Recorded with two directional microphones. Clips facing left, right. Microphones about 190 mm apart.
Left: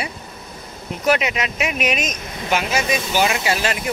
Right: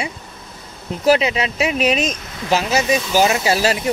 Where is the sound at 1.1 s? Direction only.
30° right (ahead or behind).